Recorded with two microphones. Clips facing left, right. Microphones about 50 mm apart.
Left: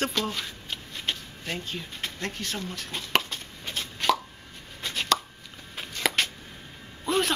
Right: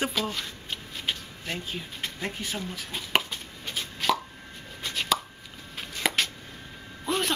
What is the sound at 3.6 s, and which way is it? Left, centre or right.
Chopping, centre.